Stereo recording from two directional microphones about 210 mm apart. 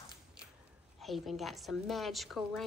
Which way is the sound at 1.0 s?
Centre (ahead or behind).